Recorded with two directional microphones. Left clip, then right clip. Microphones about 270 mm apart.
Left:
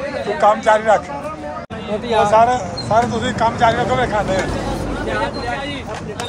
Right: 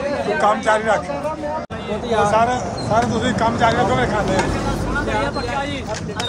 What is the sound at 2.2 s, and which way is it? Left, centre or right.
Speech, centre.